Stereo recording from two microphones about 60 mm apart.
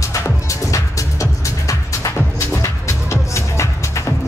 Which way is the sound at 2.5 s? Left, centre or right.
Left.